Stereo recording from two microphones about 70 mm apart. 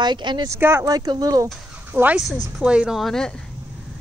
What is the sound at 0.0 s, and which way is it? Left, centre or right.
Speech, right.